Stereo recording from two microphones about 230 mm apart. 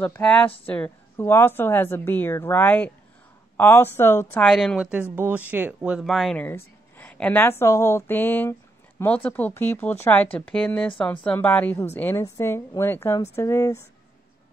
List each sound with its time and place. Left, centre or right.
0.0 s speech: centre